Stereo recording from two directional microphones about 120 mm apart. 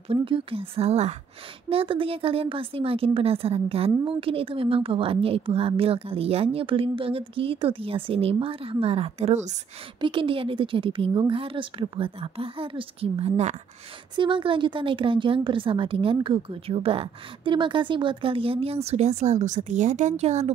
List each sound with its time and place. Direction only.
0.1 s speech: 50° right (ahead or behind)
1.7 s speech: 50° right (ahead or behind); by 9.6 s 70° right (ahead or behind)
9.9 s speech: 45° right (ahead or behind); by 13.6 s 65° right (ahead or behind)
14.1 s speech: 40° right (ahead or behind); by 20.5 s 70° right (ahead or behind)